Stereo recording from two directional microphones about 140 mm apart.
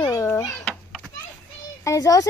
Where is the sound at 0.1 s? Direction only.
20° left (ahead or behind).